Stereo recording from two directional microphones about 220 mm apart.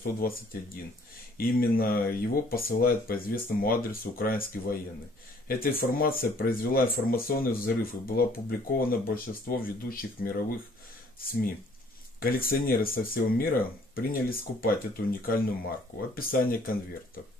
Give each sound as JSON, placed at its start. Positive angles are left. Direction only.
{"t": 0.0, "sound": "speech", "side_deg": 40}
{"t": 1.4, "sound": "speech", "side_deg": 45}
{"t": 12.2, "sound": "speech", "side_deg": 40}